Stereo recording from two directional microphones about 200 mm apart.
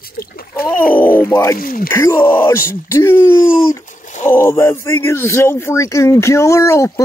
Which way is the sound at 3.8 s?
40° left (ahead or behind).